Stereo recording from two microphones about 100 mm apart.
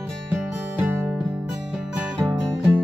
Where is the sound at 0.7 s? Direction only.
15° right (ahead or behind).